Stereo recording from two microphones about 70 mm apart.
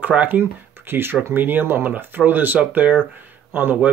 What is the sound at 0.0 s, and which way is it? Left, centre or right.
Speech, right.